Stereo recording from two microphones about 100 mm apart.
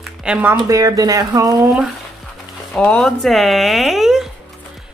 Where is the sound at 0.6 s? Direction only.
35° right (ahead or behind).